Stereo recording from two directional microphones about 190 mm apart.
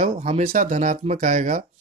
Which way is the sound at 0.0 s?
35° right (ahead or behind).